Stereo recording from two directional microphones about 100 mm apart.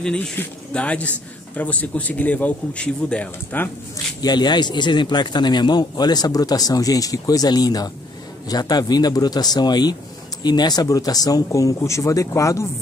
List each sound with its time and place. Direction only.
0.0 s a man's voice: 10° left (ahead or behind)
4.2 s speech: 45° left (ahead or behind)